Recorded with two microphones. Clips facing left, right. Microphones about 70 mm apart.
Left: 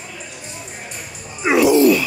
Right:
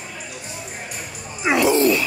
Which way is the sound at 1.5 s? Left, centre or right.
Centre.